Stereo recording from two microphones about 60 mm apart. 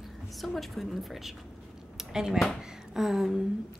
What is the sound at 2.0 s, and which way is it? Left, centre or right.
Dishes, centre.